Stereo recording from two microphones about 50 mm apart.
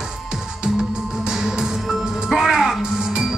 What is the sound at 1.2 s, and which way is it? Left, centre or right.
Music, centre.